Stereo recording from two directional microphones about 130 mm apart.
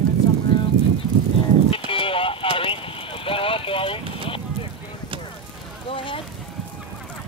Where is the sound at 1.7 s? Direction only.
45° left (ahead or behind).